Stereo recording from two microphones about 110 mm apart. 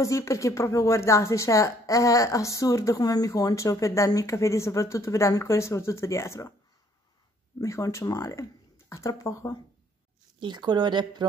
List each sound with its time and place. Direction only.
0.0 s speech: 30° left (ahead or behind)
7.6 s speech: 30° left (ahead or behind)
10.4 s speech: 40° right (ahead or behind)